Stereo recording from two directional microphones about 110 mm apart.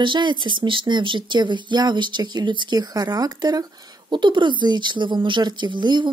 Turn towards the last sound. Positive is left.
turn(degrees=-45)  # may be behind; listen again after turning